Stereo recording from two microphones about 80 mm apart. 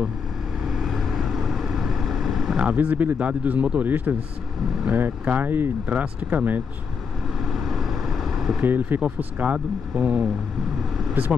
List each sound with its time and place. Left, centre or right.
0.7 s vehicle: centre
2.6 s speech: centre
7.5 s vehicle: centre
8.5 s speech: right